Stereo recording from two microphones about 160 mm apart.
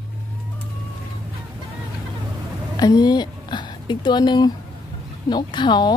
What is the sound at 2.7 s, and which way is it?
A woman's voice, 25° left (ahead or behind).